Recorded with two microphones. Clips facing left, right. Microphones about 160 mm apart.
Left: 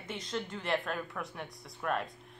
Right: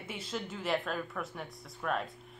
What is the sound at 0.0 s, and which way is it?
A woman's voice, 5° right (ahead or behind).